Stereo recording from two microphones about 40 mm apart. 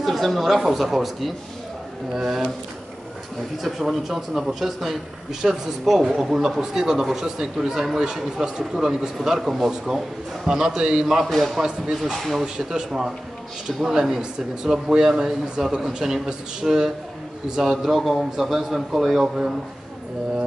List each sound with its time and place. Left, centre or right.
0.0 s a man's voice: centre
3.6 s a man's voice: centre; by 11.1 s right
11.2 s speech: centre
11.6 s a man's voice: centre
12.2 s speech: centre
12.5 s a man's voice: centre
17.8 s a man's voice: centre
19.2 s a man's voice: centre